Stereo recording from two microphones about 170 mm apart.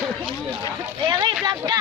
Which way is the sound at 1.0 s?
25° right (ahead or behind).